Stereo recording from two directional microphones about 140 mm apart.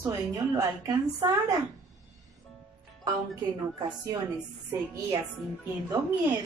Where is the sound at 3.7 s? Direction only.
30° right (ahead or behind).